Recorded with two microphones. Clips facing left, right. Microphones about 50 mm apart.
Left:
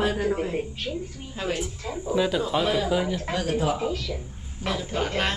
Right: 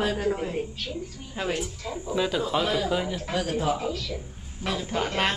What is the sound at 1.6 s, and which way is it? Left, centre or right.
Speech, left.